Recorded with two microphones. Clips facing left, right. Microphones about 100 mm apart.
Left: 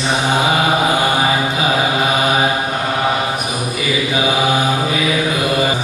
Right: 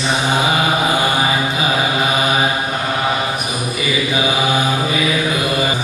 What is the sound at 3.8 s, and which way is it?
Mantra, centre (ahead or behind).